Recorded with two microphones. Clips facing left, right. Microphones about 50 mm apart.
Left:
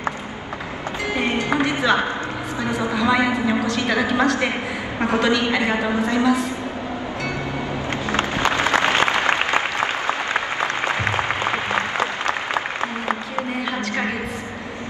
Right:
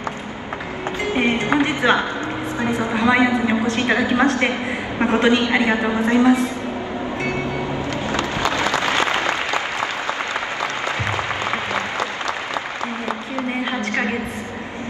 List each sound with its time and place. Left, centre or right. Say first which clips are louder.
1.1 s music: right 3 dB; right
2.6 s a man's voice: right 2 dB; right
8.1 s applause: left 2 dB; left
10.6 s applause: left 2 dB; left